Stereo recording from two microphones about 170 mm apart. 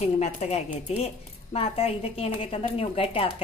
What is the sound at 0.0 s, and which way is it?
A woman's voice, 40° left (ahead or behind).